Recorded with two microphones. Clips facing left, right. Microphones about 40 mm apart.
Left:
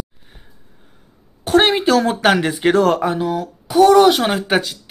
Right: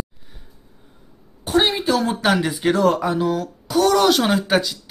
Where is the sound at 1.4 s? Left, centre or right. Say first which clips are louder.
Left 5 dB; left.